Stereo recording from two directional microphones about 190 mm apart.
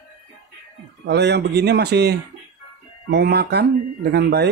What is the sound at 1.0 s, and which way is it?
Speech, 60° right (ahead or behind).